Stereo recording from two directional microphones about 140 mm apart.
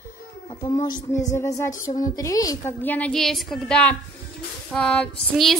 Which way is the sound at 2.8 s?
10° left (ahead or behind).